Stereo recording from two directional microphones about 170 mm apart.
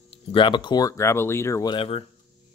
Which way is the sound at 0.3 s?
30° left (ahead or behind).